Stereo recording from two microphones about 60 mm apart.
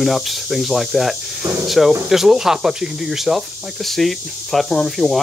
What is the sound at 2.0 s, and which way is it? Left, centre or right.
Speech, centre.